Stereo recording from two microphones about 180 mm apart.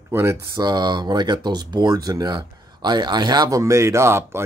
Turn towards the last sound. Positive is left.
turn(degrees=-15)  # may be behind; listen again after turning